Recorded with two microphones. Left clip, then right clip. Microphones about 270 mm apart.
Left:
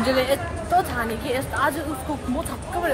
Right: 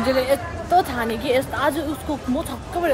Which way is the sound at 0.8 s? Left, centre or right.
Right.